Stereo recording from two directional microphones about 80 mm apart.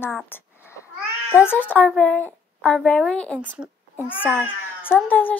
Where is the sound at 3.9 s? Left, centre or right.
Left.